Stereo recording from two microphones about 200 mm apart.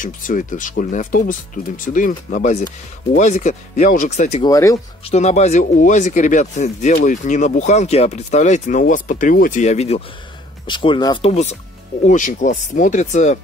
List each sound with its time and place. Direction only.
0.0 s speech: 40° left (ahead or behind)
4.4 s speech: 15° left (ahead or behind)
5.1 s speech: 35° left (ahead or behind)
12.0 s speech: 40° left (ahead or behind)